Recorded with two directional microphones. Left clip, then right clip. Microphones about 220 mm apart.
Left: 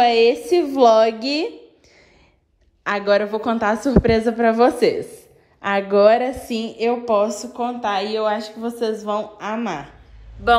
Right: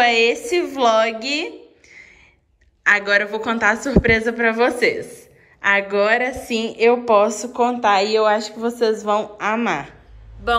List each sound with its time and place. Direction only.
0.0 s a woman's voice: 20° left (ahead or behind)
2.8 s a woman's voice: 20° left (ahead or behind)